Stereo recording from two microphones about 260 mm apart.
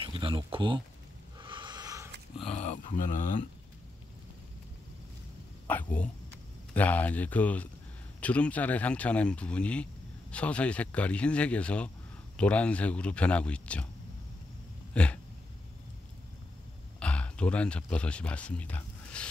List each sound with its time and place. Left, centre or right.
0.0 s speech: centre
1.4 s a sound: centre
2.3 s a sound: centre
2.6 s speech: left
5.7 s speech: centre
15.0 s speech: centre
17.0 s speech: centre